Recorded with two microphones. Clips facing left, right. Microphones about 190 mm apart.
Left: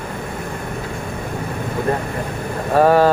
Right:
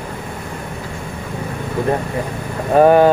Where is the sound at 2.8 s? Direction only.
20° right (ahead or behind).